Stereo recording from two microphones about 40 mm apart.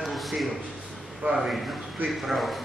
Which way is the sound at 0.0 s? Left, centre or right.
Centre.